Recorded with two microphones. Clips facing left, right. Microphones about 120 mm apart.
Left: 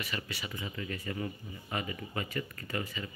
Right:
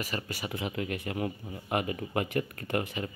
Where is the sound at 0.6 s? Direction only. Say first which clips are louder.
Right 7 dB; 70° right (ahead or behind).